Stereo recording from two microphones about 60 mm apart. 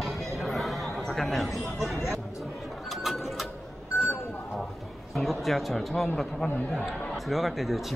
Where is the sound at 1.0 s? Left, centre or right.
Centre.